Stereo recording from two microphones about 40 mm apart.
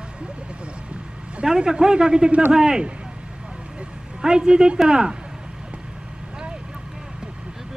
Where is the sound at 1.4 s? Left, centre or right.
Centre.